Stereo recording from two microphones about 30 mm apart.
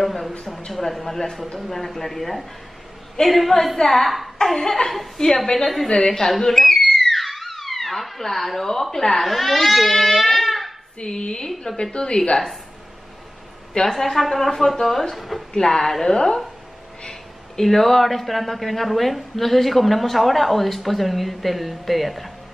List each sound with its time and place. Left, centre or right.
0.0 s a sound: centre
0.7 s speech: centre
5.9 s a woman's voice: left
6.5 s a sound: centre
7.0 s theremin: centre
8.9 s speech: centre
9.2 s speech: centre
11.0 s speech: left
13.9 s speech: centre
15.5 s speech: left; by 22.3 s centre